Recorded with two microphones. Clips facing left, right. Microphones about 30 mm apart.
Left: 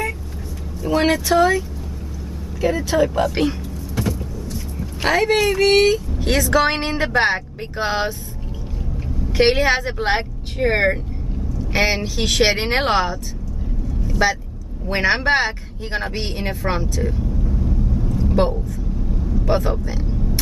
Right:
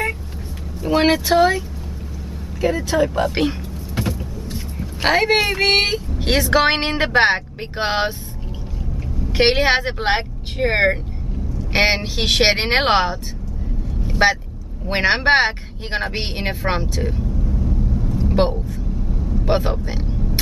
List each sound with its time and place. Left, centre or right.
0.8 s speech: right
2.9 s speech: centre
4.0 s speech: right
9.3 s a woman's voice: right
11.7 s speech: right
14.0 s vehicle: right
14.9 s speech: right
17.2 s vehicle: centre
18.3 s vehicle: right
19.4 s speech: right